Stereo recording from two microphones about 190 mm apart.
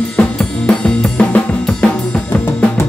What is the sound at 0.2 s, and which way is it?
Drum kit, 5° left (ahead or behind).